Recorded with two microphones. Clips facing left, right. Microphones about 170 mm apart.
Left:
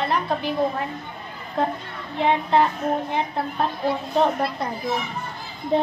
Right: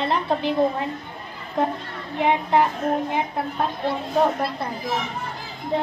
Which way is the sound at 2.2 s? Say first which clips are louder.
Even; 15° right (ahead or behind).